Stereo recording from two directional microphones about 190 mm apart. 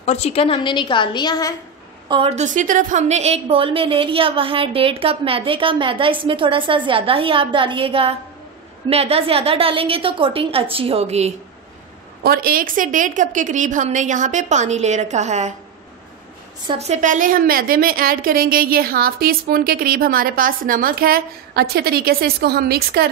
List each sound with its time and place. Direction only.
0.0 s a woman's voice: 35° left (ahead or behind)
2.0 s a woman's voice: 30° right (ahead or behind)
12.2 s a woman's voice: 50° right (ahead or behind)
16.6 s a woman's voice: 35° right (ahead or behind); by 23.0 s 55° right (ahead or behind)